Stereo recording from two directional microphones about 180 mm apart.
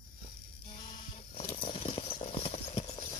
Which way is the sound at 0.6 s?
30° left (ahead or behind).